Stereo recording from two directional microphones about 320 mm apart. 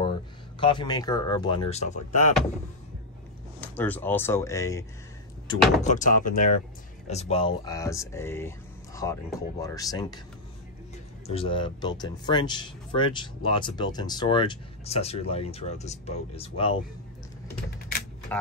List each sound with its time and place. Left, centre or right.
0.0 s speech: centre
3.6 s speech: centre
5.8 s speech: left
11.2 s speech: centre